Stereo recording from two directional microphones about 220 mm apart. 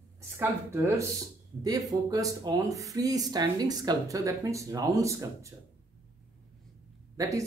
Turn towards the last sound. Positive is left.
turn(degrees=-15)  # may be behind; listen again after turning